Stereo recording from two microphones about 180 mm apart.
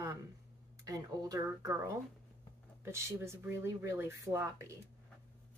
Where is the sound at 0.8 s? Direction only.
20° right (ahead or behind).